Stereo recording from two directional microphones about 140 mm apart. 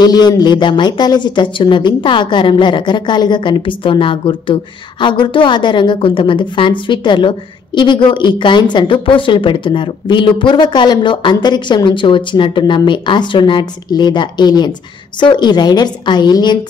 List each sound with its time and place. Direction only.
0.0 s a woman's voice: 30° left (ahead or behind)